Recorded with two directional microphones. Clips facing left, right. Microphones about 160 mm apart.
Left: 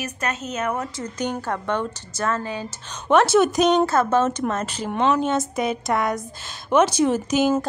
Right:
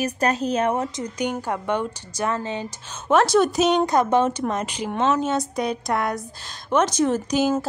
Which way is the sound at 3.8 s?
15° right (ahead or behind).